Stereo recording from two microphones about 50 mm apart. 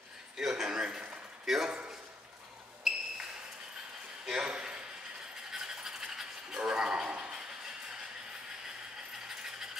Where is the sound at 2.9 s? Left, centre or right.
Centre.